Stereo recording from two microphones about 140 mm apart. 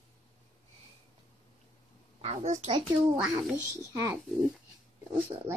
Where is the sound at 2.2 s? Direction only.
50° right (ahead or behind).